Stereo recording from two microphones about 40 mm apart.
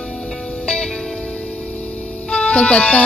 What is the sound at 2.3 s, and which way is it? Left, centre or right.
Music, left.